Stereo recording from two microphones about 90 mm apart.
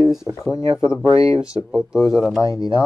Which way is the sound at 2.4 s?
40° left (ahead or behind).